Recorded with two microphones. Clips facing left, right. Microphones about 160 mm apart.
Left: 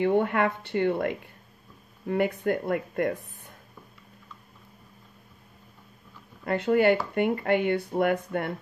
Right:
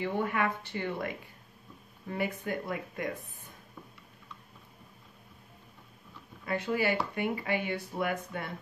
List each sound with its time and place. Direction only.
0.0 s speech: 60° left (ahead or behind)
6.4 s speech: 60° left (ahead or behind)